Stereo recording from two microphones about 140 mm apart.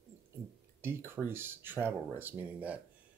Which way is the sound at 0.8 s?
15° right (ahead or behind).